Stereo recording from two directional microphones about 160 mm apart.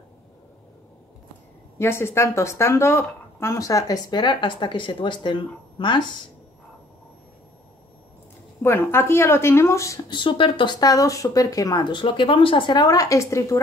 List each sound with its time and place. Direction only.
1.8 s speech: 15° left (ahead or behind)
8.6 s speech: 15° left (ahead or behind)